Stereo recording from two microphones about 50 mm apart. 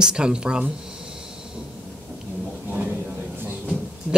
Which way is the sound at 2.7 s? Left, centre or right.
Right.